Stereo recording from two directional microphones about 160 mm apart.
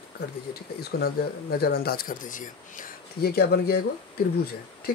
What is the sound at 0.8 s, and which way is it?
Speech, 75° left (ahead or behind).